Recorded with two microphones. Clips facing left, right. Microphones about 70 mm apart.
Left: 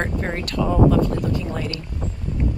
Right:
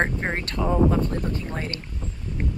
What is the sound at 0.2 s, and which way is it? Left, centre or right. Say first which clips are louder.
Speech: left 3 dB; right.